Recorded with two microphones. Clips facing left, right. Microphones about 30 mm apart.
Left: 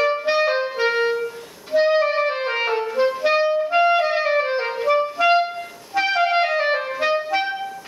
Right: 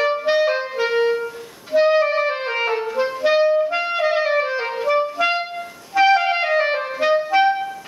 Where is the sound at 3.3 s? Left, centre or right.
Centre.